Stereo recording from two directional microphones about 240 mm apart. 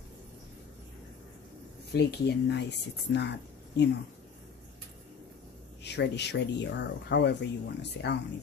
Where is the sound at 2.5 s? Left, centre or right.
Left.